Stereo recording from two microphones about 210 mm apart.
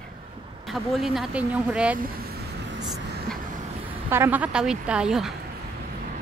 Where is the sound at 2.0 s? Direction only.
45° right (ahead or behind).